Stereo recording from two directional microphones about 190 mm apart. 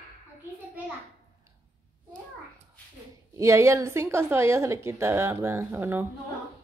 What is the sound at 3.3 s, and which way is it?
A woman's voice, 15° right (ahead or behind).